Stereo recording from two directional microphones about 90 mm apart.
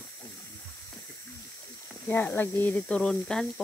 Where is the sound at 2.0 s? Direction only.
20° left (ahead or behind); by 3.6 s 5° left (ahead or behind).